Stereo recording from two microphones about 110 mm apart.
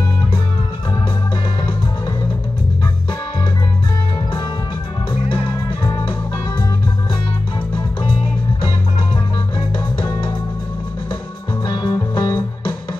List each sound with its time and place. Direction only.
11.6 s music: 40° left (ahead or behind)